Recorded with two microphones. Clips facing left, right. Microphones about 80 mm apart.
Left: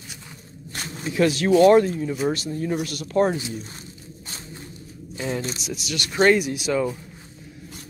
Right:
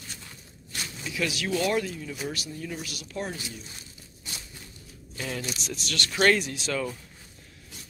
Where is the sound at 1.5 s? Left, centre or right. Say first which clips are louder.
Left 13 dB; left.